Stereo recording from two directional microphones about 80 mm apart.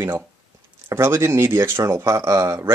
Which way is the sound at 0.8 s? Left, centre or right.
Right.